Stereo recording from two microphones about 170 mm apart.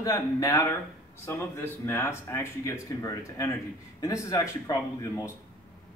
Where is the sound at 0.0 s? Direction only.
20° left (ahead or behind).